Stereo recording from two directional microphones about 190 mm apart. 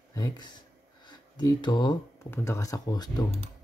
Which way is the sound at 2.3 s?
15° left (ahead or behind).